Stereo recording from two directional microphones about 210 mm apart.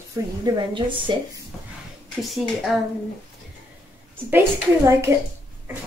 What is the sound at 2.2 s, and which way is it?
Speech, centre (ahead or behind).